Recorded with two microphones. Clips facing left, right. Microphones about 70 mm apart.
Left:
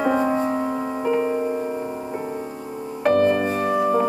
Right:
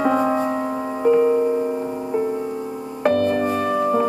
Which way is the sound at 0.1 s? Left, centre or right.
Centre.